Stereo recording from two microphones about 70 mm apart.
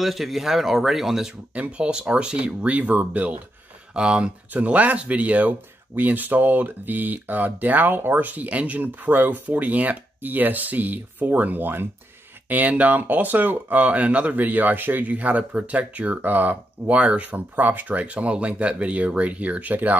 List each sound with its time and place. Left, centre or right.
0.0 s speech: centre
1.5 s speech: centre